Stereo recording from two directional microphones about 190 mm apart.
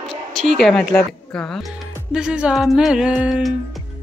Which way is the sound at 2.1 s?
5° right (ahead or behind).